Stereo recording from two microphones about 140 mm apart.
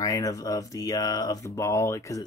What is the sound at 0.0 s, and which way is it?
Speech, 25° left (ahead or behind).